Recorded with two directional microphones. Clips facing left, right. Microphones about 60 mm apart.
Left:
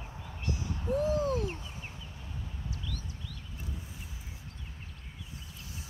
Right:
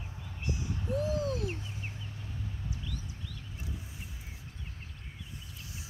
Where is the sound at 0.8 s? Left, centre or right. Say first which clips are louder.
Left 3 dB; left.